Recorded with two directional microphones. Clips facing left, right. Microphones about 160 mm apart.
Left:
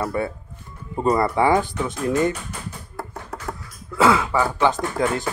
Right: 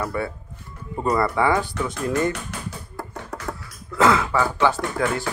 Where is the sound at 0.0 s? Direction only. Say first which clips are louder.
Left 2 dB; 20° left (ahead or behind).